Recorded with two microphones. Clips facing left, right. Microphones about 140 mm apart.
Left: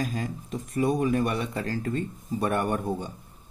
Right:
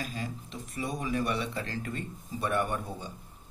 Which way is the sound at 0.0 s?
45° left (ahead or behind).